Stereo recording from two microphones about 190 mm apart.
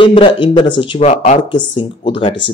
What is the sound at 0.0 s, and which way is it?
Speech, 25° left (ahead or behind).